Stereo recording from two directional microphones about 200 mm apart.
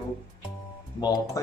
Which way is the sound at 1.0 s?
20° left (ahead or behind).